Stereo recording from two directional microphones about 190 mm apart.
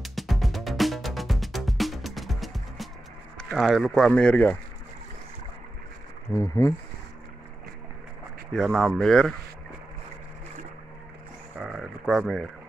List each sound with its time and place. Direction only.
0.0 s music: centre (ahead or behind)
3.3 s speech: centre (ahead or behind)
6.3 s speech: 15° left (ahead or behind)
8.5 s speech: centre (ahead or behind)
11.6 s speech: centre (ahead or behind)